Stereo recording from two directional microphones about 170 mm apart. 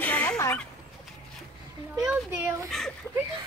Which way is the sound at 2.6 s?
Centre (ahead or behind).